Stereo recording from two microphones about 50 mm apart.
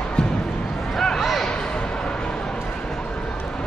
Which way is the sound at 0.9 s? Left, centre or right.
Centre.